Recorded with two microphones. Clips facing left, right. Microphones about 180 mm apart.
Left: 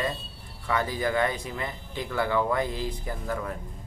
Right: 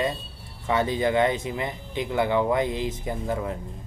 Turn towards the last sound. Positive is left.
turn(degrees=-20)  # may be behind; listen again after turning